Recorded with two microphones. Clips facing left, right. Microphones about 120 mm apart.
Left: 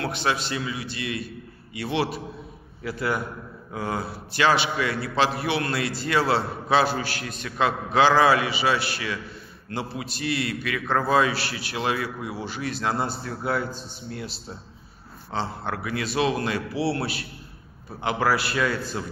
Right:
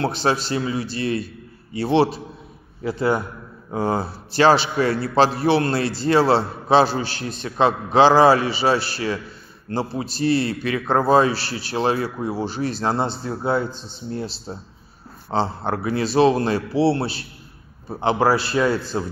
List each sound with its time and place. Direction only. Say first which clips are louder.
0.0 s a man's voice: right 5 dB; 35° right (ahead or behind)